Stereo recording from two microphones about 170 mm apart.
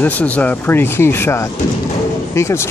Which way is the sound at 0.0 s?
10° left (ahead or behind).